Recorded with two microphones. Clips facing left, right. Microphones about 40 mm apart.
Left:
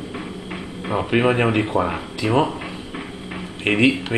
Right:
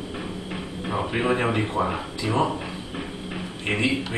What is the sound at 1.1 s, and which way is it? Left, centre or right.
Speech, left.